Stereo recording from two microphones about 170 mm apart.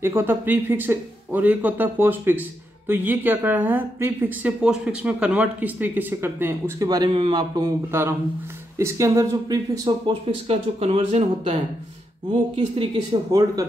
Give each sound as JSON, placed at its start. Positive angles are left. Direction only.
{"t": 0.0, "sound": "speech", "side_deg": -15}